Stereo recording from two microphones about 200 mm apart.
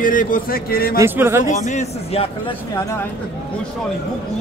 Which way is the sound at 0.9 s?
10° right (ahead or behind).